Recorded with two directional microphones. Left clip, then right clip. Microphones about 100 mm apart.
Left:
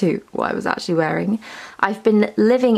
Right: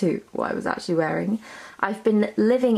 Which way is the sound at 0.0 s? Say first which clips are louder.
Left 4 dB; 30° left (ahead or behind).